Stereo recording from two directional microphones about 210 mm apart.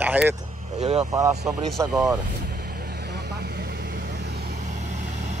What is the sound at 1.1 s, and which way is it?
Speech, 10° right (ahead or behind).